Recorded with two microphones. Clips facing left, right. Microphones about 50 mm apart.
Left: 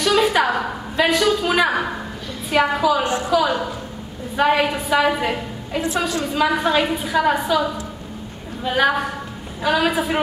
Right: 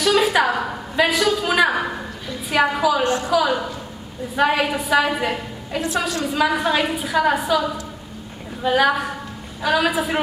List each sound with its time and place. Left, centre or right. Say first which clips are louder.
0.0 s a woman's voice: even; centre
3.0 s a woman's voice: right 1 dB; left
3.3 s a woman's voice: even; centre
8.6 s a woman's voice: right 1 dB; centre